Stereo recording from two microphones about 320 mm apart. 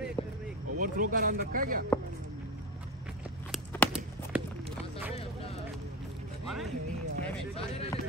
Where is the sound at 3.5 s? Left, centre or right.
Centre.